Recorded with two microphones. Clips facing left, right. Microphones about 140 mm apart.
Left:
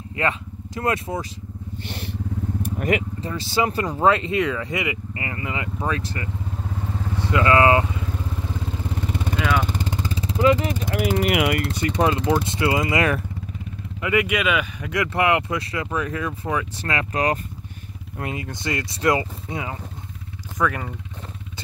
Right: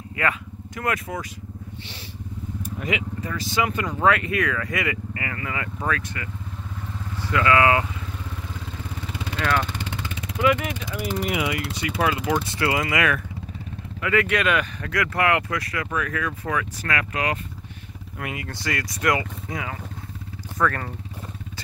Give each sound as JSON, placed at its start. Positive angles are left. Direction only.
{"t": 0.1, "sound": "speech", "side_deg": 30}
{"t": 1.8, "sound": "vehicle", "side_deg": 50}
{"t": 3.2, "sound": "speech", "side_deg": 30}
{"t": 9.4, "sound": "speech", "side_deg": 0}
{"t": 9.7, "sound": "vehicle", "side_deg": 40}
{"t": 10.9, "sound": "speech", "side_deg": 90}
{"t": 12.0, "sound": "speech", "side_deg": 30}
{"t": 14.0, "sound": "speech", "side_deg": 15}
{"t": 14.9, "sound": "speech", "side_deg": 20}
{"t": 20.5, "sound": "speech", "side_deg": 10}